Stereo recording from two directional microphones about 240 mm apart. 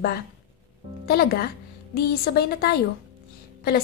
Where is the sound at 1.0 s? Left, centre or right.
Left.